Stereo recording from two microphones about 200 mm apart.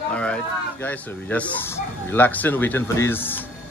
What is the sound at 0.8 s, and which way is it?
Speech, 10° left (ahead or behind).